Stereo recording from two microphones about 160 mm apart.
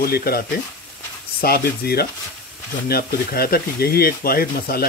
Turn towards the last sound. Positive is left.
turn(degrees=70)  # may be behind; listen again after turning